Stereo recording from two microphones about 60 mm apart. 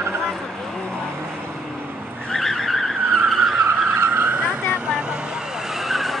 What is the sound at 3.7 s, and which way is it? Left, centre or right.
Vehicle, right.